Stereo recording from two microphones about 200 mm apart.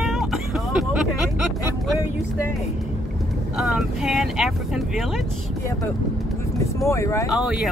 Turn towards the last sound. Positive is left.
turn(degrees=0)  # may be behind; listen again after turning